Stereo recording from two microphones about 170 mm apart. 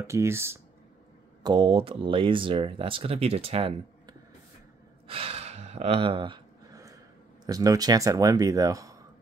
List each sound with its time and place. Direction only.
0.0 s speech: 15° right (ahead or behind)
1.4 s speech: 30° right (ahead or behind)
5.0 s gasp: 35° right (ahead or behind)
7.4 s speech: 20° right (ahead or behind)